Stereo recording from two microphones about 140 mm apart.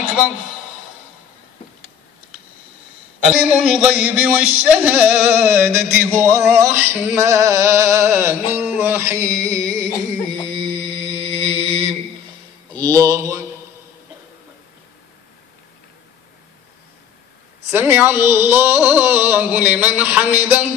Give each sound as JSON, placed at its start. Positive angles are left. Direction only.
{"t": 3.3, "sound": "speech", "side_deg": -10}
{"t": 6.5, "sound": "male singing", "side_deg": -20}
{"t": 10.5, "sound": "mantra", "side_deg": -35}
{"t": 12.7, "sound": "mantra", "side_deg": -25}
{"t": 17.6, "sound": "speech", "side_deg": -15}